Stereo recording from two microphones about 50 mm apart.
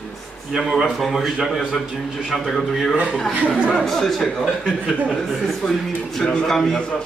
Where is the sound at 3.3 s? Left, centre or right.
Right.